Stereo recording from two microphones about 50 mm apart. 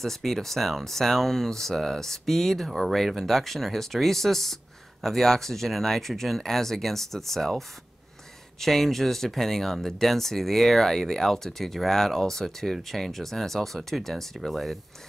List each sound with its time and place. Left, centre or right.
0.0 s speech: centre